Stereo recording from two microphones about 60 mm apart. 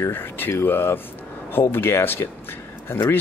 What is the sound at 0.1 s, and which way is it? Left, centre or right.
Speech, left.